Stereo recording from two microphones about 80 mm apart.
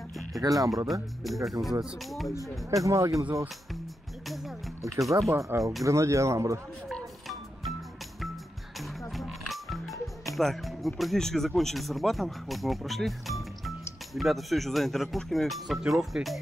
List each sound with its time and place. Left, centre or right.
0.3 s speech: right
1.2 s speech: centre
2.7 s speech: right
4.9 s speech: right
5.5 s speech: right
6.9 s music: centre
9.1 s music: centre
11.0 s speech: centre